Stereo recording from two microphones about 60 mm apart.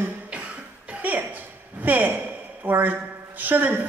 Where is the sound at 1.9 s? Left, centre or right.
Right.